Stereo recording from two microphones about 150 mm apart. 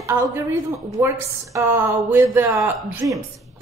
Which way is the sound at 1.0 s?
20° right (ahead or behind).